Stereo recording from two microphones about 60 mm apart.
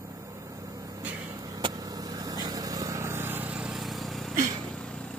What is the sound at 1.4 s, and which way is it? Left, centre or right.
Vehicle, right.